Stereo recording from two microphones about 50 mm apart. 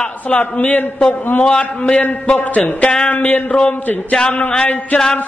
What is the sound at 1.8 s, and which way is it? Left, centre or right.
A man's voice, left.